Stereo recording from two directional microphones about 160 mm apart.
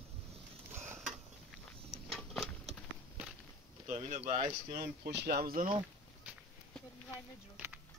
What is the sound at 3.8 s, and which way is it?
Speech, 45° right (ahead or behind).